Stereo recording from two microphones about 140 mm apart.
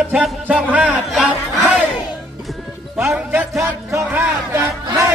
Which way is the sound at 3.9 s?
20° right (ahead or behind).